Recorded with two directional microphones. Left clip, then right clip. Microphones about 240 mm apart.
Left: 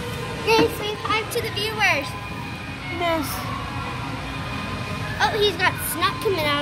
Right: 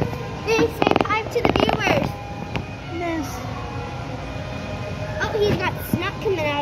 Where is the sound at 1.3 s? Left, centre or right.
Left.